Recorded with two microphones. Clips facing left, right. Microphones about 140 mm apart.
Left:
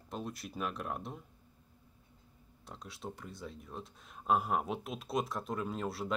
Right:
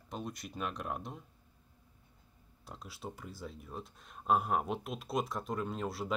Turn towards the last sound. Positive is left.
turn(degrees=0)  # may be behind; listen again after turning